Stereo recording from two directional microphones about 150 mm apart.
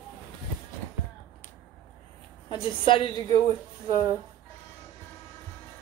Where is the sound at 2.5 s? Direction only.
35° left (ahead or behind).